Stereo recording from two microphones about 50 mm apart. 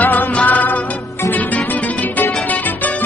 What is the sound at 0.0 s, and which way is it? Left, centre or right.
Music, left.